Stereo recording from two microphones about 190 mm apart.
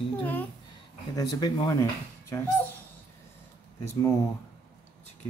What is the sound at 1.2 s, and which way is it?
Speech, 20° left (ahead or behind).